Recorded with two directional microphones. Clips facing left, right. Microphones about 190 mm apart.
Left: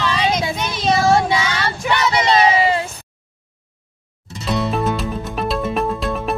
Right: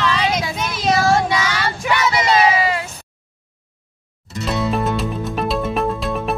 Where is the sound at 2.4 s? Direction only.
25° left (ahead or behind).